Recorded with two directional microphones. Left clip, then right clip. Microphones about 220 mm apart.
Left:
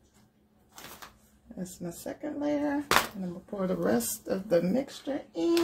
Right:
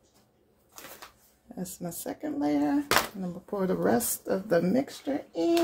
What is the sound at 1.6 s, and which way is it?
Speech, 45° right (ahead or behind).